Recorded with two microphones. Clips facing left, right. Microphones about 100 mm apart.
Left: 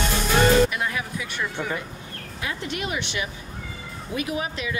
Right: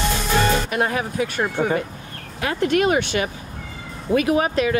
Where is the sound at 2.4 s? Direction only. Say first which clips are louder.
Right 11 dB; 65° right (ahead or behind).